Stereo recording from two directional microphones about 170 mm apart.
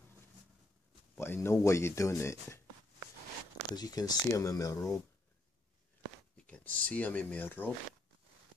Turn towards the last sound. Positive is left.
turn(degrees=10)  # may be behind; listen again after turning